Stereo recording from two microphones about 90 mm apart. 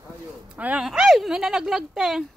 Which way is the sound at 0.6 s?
15° right (ahead or behind).